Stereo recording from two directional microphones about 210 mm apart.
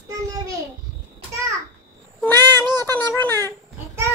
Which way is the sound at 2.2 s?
10° left (ahead or behind).